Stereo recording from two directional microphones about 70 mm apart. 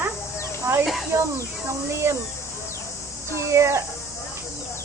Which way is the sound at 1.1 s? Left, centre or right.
Right.